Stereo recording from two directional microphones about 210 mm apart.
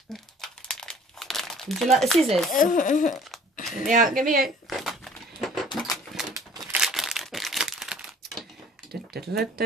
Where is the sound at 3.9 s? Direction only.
40° right (ahead or behind).